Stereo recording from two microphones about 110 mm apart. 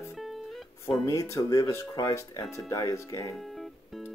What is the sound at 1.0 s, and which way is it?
Speech, 30° left (ahead or behind).